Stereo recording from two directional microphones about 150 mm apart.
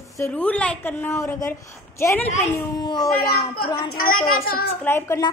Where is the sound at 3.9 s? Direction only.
70° left (ahead or behind).